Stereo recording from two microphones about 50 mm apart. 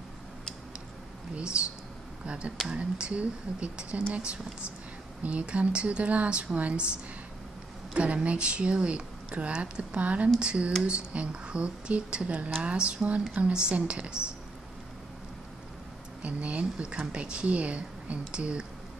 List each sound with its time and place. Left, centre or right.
1.5 s speech: right
16.2 s speech: right